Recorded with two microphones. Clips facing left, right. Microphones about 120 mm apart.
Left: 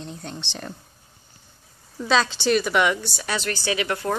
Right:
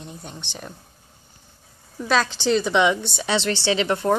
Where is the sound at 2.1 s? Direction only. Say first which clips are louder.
Even; 10° right (ahead or behind).